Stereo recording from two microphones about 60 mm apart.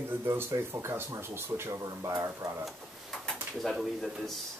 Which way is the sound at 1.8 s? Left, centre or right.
Right.